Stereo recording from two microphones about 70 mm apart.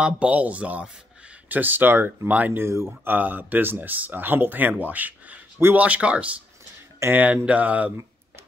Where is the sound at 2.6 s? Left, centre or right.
Right.